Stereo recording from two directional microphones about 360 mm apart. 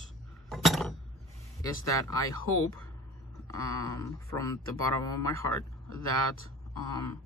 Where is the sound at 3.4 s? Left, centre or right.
Centre.